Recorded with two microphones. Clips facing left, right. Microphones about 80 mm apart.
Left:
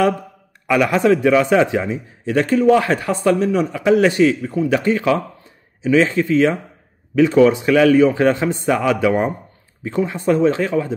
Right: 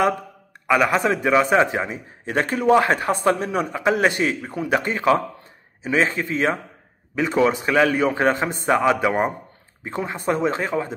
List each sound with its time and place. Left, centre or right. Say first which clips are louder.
0.7 s a man's voice: left 4 dB; right
4.6 s speech: left 1 dB; right
4.8 s a man's voice: left 2 dB; right